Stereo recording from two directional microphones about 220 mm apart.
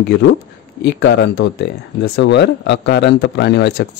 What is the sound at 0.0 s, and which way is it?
Speech, 50° left (ahead or behind).